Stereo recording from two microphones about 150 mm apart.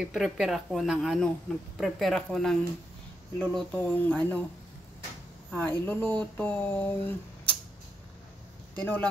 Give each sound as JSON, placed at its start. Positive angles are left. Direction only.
{"t": 0.0, "sound": "speech", "side_deg": 0}
{"t": 5.6, "sound": "speech", "side_deg": 15}
{"t": 8.7, "sound": "speech", "side_deg": 10}